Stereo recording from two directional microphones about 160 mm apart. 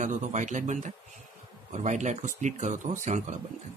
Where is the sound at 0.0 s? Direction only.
50° right (ahead or behind).